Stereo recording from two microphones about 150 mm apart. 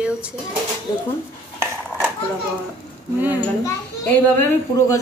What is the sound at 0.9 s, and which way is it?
Speech, 25° left (ahead or behind).